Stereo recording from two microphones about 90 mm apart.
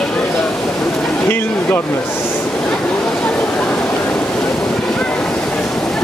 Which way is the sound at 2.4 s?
10° left (ahead or behind).